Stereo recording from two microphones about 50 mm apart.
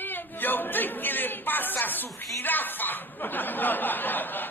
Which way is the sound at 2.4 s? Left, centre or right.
Left.